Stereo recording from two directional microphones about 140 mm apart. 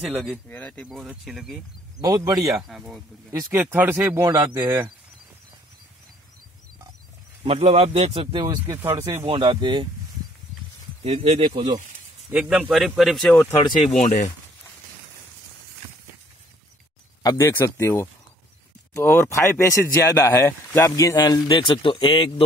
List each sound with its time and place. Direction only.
0.0 s speech: 5° right (ahead or behind)
0.5 s speech: 10° left (ahead or behind)
0.8 s a man's voice: 5° right (ahead or behind)
2.0 s speech: 25° right (ahead or behind)
2.6 s a man's voice: 5° right (ahead or behind)
4.4 s speech: 35° right (ahead or behind)
7.4 s speech: 45° right (ahead or behind)
8.6 s speech: 25° right (ahead or behind)
11.1 s speech: 45° right (ahead or behind)
12.3 s a man's voice: 10° right (ahead or behind)
13.6 s speech: 30° left (ahead or behind)
13.8 s speech: 55° left (ahead or behind)
17.2 s speech: 25° left (ahead or behind)